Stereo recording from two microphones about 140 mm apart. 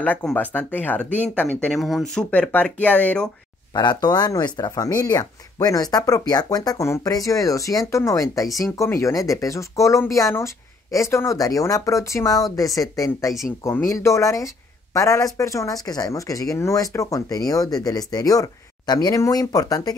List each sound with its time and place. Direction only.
0.0 s speech: 10° left (ahead or behind)
1.8 s speech: centre (ahead or behind)
3.7 s speech: 30° left (ahead or behind)